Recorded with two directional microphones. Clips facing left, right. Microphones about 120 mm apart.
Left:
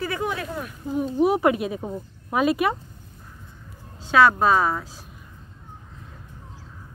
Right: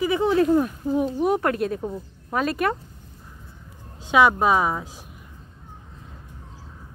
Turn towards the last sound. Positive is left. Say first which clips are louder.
# even
turn(degrees=-15)  # may be behind; listen again after turning